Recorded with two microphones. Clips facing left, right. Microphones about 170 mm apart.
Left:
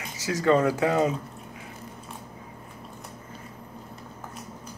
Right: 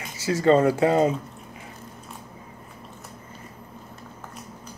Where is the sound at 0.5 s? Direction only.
20° right (ahead or behind).